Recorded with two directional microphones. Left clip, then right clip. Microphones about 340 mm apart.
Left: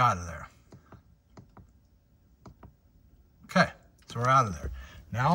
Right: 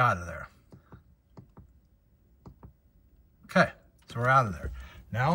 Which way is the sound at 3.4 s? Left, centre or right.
Centre.